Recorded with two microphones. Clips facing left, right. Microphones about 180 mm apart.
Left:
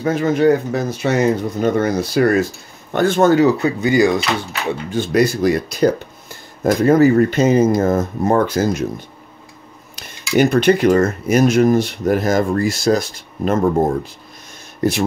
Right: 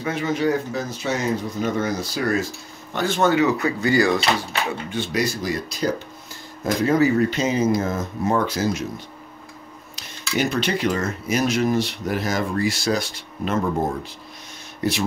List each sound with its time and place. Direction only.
0.0 s speech: 45° left (ahead or behind)
3.5 s speech: 25° left (ahead or behind)
4.9 s speech: 50° left (ahead or behind)
10.3 s speech: 55° left (ahead or behind)
14.8 s speech: 50° left (ahead or behind)